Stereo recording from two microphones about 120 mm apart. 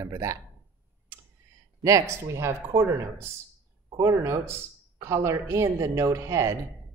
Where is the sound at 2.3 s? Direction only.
25° right (ahead or behind).